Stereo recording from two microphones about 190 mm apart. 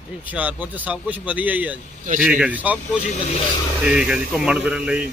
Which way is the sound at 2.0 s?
45° right (ahead or behind).